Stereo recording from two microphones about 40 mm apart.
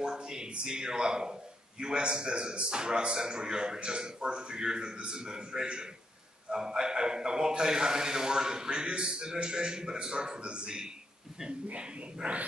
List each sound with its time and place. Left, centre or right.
0.0 s a man's voice: centre
12.2 s a man's voice: right